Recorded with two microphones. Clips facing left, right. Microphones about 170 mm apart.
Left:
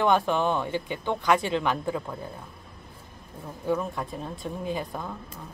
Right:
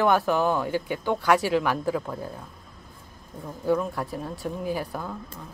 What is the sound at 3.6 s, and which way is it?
Speech, 5° right (ahead or behind).